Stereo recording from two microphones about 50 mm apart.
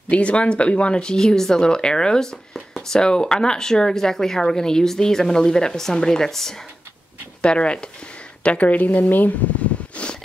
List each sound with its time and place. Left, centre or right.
0.1 s speech: left; by 3.0 s centre
3.0 s speech: centre
7.4 s speech: left
9.9 s snort: left